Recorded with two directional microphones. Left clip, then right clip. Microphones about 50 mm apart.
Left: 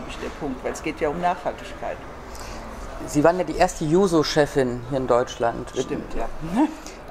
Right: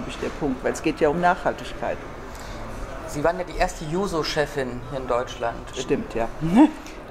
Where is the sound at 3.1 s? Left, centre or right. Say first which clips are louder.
Left 5 dB; left.